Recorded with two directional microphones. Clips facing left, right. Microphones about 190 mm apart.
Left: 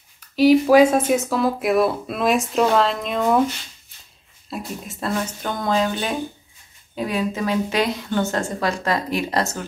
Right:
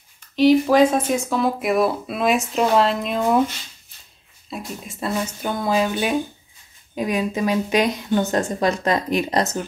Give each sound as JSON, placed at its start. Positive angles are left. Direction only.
{"t": 0.4, "sound": "speech", "side_deg": 10}
{"t": 4.5, "sound": "speech", "side_deg": 0}